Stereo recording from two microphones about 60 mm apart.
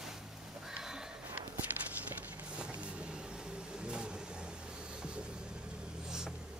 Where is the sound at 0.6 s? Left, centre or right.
Centre.